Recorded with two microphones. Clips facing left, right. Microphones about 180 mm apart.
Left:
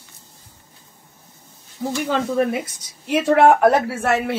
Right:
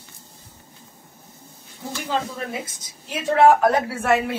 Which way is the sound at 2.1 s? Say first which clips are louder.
Left 6 dB; 65° left (ahead or behind).